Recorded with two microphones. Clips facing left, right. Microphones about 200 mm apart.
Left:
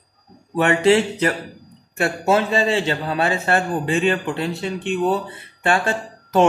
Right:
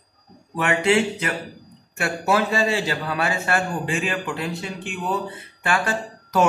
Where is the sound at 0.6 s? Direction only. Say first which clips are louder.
Left 4 dB; 35° left (ahead or behind).